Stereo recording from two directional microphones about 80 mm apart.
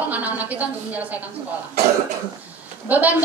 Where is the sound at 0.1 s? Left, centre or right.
Centre.